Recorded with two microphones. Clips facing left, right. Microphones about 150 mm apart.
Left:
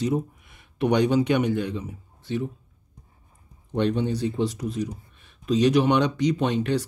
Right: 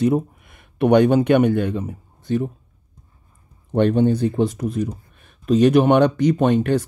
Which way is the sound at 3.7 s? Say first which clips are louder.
Right 7 dB; 50° right (ahead or behind).